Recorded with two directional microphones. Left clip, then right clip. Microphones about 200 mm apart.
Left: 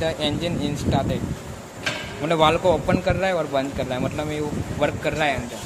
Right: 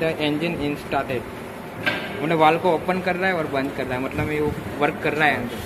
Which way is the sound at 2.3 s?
50° left (ahead or behind).